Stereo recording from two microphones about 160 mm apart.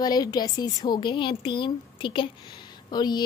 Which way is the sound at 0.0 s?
25° left (ahead or behind).